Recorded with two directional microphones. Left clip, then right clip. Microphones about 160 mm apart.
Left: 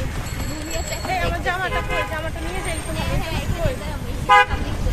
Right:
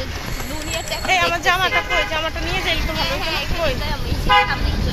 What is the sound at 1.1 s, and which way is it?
Speech, 20° right (ahead or behind).